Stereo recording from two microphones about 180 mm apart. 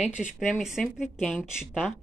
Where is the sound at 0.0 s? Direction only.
5° right (ahead or behind).